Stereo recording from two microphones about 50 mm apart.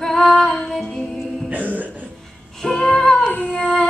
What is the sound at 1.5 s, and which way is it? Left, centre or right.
Music, right.